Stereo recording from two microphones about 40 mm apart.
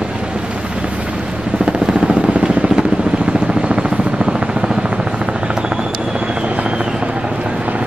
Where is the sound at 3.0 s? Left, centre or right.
Right.